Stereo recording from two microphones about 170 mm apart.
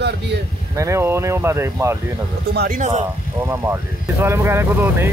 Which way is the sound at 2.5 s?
70° right (ahead or behind).